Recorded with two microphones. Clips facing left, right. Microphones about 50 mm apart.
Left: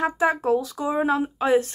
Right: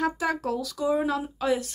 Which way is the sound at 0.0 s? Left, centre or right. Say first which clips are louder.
Left 5 dB; left.